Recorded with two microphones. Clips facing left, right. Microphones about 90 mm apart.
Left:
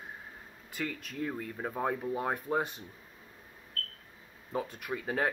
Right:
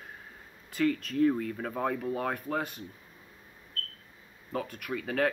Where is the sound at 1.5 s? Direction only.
15° left (ahead or behind).